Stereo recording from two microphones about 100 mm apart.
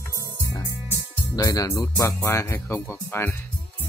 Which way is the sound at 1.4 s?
35° left (ahead or behind).